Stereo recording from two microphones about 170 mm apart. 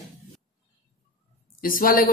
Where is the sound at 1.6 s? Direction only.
55° left (ahead or behind).